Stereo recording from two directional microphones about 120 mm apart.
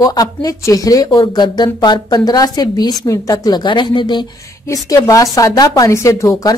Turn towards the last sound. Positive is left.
turn(degrees=30)  # may be behind; listen again after turning